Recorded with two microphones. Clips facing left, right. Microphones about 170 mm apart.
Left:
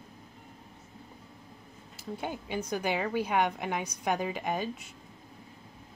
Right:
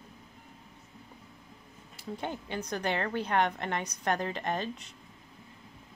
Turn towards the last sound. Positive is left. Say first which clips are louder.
# left 1 dB
turn(degrees=10)  # may be behind; listen again after turning